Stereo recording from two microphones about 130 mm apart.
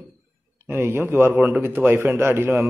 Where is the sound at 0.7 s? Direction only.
20° right (ahead or behind).